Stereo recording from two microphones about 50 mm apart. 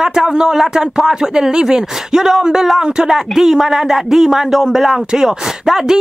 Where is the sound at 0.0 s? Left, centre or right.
Centre.